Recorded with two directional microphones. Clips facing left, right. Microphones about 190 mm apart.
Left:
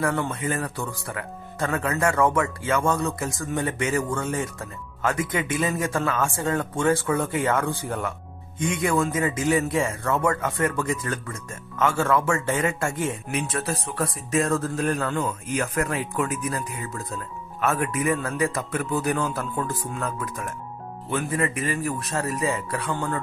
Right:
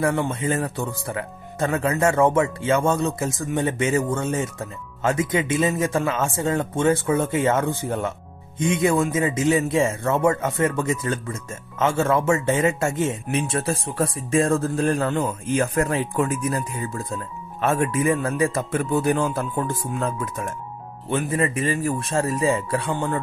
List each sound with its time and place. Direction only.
0.0 s a man's voice: 25° right (ahead or behind)